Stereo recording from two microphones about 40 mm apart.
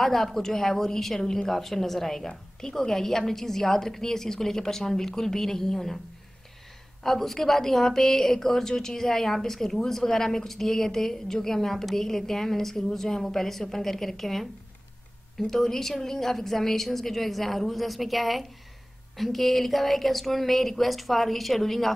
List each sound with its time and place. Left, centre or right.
0.0 s a woman's voice: centre
7.0 s a woman's voice: centre